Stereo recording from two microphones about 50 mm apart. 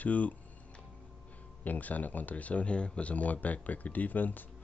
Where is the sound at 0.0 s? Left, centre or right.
Left.